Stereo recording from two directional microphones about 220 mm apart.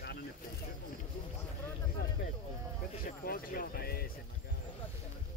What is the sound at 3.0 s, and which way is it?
Speech, 40° left (ahead or behind).